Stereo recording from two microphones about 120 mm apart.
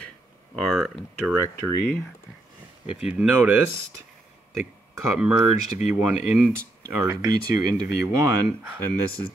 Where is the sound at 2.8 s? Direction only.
10° right (ahead or behind).